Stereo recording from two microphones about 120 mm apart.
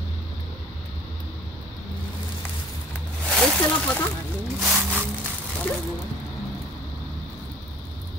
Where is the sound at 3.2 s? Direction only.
5° left (ahead or behind).